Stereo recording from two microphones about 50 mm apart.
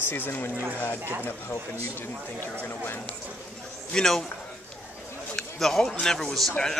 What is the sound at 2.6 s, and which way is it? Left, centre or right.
Speech, left.